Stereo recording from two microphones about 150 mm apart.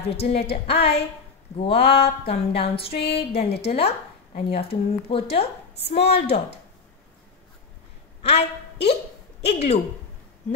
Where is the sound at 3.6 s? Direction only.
45° left (ahead or behind).